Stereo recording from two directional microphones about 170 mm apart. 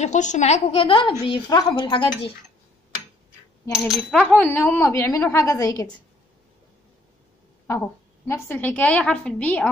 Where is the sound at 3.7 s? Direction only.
5° right (ahead or behind); by 5.9 s 20° left (ahead or behind).